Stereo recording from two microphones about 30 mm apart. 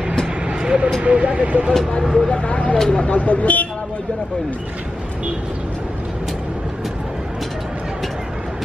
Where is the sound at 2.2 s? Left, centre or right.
Left.